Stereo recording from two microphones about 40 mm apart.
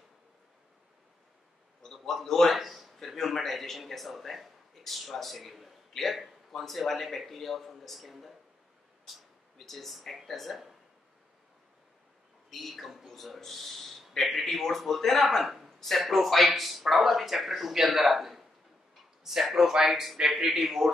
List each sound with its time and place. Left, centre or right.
1.8 s a sound: centre
2.2 s a man's voice: centre
12.4 s a man's voice: centre